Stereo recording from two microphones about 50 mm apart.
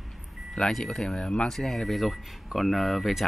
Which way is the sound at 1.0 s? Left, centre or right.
Centre.